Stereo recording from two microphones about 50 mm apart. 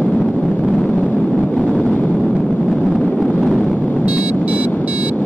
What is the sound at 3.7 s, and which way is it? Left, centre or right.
Explosion, left.